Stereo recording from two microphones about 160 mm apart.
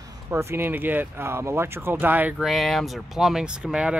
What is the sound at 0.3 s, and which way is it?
Speech, 15° right (ahead or behind).